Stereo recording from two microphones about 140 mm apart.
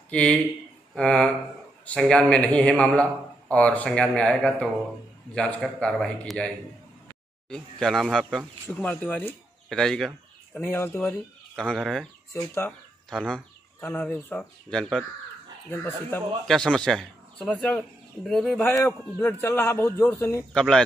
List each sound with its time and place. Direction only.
0.1 s speech: 10° left (ahead or behind)
10.6 s speech: 15° left (ahead or behind)
12.3 s speech: 15° left (ahead or behind)
15.7 s speech: 15° left (ahead or behind)
16.4 s speech: 5° left (ahead or behind)
19.2 s speech: 15° left (ahead or behind)
20.5 s speech: 5° left (ahead or behind)